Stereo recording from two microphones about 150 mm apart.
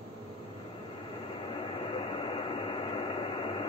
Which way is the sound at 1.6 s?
40° left (ahead or behind).